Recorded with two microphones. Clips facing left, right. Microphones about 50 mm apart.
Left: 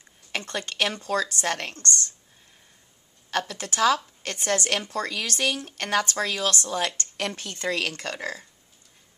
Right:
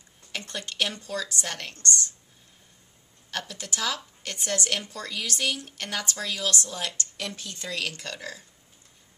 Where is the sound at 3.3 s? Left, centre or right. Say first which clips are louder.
Left 6 dB; left.